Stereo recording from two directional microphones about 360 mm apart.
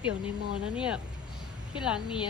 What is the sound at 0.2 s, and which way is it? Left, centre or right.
Speech, centre.